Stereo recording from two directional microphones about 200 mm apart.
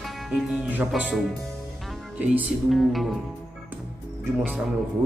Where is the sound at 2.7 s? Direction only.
Centre (ahead or behind).